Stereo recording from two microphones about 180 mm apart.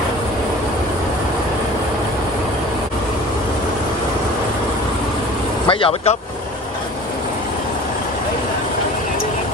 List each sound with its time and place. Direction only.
5.7 s speech: 30° left (ahead or behind)